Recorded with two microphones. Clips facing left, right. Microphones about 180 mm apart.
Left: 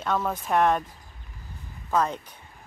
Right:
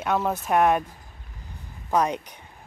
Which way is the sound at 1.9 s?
15° right (ahead or behind).